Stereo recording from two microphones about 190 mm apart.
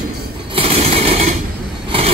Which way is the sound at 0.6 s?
30° right (ahead or behind).